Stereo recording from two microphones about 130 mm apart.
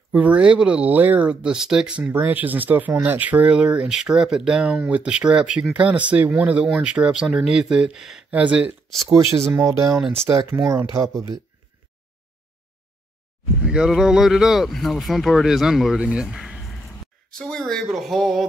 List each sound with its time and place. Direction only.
0.1 s speech: 10° right (ahead or behind)
9.1 s speech: 20° right (ahead or behind)
9.8 s speech: 5° right (ahead or behind)
10.7 s speech: 25° right (ahead or behind)
13.7 s speech: 5° right (ahead or behind)